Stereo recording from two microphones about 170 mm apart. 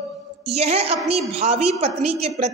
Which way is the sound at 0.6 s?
35° right (ahead or behind).